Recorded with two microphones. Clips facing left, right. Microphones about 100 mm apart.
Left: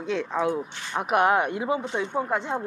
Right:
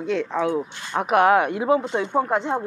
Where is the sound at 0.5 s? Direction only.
25° right (ahead or behind).